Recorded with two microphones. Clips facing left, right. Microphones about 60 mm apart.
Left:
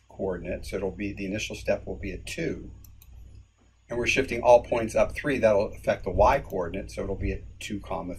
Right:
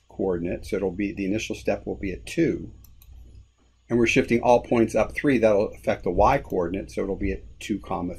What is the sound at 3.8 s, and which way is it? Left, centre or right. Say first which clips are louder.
Speech: right 6 dB; right.